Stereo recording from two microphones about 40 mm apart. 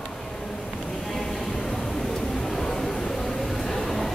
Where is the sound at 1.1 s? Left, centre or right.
Centre.